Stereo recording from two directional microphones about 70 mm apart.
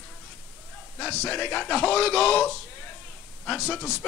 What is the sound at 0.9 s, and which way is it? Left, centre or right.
Speech, centre.